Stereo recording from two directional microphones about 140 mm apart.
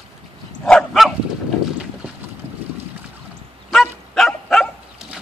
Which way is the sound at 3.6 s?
Centre (ahead or behind).